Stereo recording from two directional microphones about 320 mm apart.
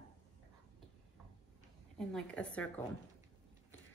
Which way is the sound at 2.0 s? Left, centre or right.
Centre.